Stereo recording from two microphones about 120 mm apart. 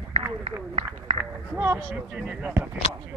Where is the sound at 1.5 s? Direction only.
20° right (ahead or behind).